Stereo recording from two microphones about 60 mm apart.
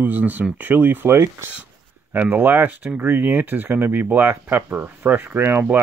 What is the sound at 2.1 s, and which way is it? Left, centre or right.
Speech, right.